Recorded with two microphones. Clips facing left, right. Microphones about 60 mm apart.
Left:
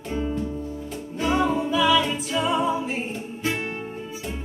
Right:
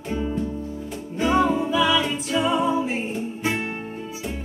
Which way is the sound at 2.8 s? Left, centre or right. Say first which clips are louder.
Right 3 dB; centre.